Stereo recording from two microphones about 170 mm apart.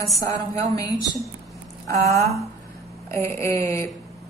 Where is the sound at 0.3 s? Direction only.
20° left (ahead or behind).